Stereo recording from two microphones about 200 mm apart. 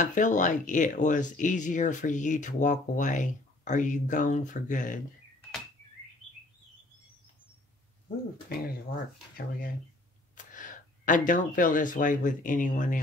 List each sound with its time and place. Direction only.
0.0 s speech: 40° left (ahead or behind)
10.3 s speech: 40° left (ahead or behind)